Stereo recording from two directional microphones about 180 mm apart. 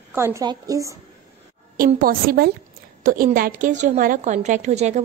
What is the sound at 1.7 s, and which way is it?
A woman's voice, 50° right (ahead or behind).